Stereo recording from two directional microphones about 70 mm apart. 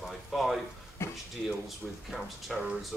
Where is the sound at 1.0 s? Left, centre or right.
Left.